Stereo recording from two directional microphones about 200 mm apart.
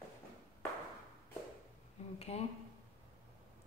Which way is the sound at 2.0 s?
35° left (ahead or behind).